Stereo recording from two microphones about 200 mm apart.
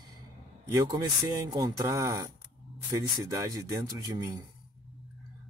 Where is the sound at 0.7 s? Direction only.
20° right (ahead or behind).